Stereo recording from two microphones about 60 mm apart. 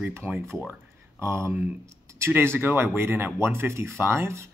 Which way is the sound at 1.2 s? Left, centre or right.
Right.